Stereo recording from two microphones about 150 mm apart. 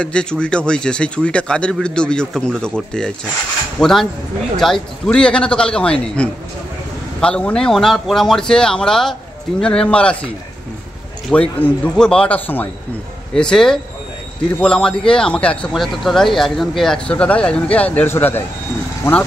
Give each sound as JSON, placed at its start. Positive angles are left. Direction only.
{"t": 0.0, "sound": "a man's voice", "side_deg": 5}
{"t": 11.2, "sound": "a man's voice", "side_deg": 5}